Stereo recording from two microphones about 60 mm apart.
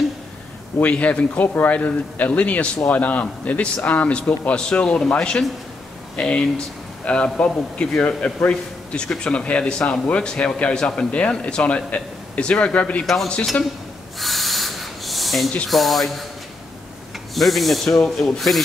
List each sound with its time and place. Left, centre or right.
0.9 s a man's voice: left
13.0 s snake: centre
14.2 s a sound: centre
15.7 s snake: centre
17.3 s snake: centre